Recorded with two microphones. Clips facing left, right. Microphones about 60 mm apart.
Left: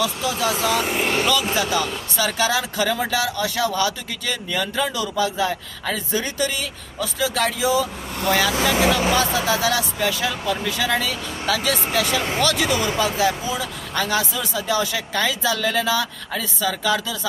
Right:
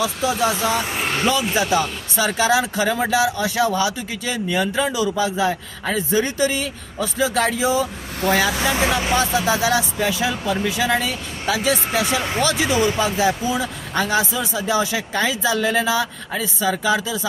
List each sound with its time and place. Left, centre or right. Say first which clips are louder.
0.0 s speech: right 2 dB; right